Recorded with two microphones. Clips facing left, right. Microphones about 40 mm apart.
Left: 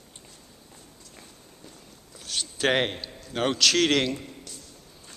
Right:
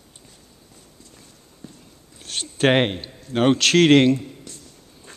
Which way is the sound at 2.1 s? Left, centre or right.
Right.